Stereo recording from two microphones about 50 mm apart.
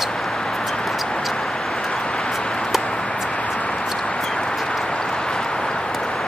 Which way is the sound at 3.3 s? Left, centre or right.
Left.